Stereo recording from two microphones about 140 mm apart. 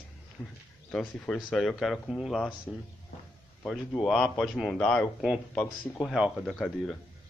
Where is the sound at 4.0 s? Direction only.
5° left (ahead or behind).